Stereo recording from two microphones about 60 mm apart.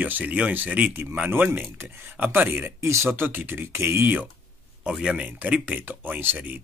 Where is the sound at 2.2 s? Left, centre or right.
Right.